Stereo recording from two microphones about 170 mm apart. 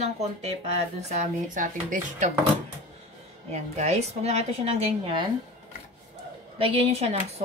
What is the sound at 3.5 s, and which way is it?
A woman's voice, 40° right (ahead or behind).